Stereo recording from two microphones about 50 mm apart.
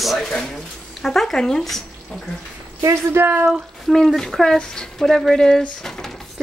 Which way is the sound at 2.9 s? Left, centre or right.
Right.